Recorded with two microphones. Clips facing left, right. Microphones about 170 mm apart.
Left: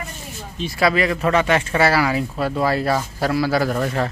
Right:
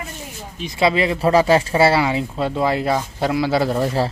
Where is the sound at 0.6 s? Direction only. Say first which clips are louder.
Right 1 dB; 20° right (ahead or behind).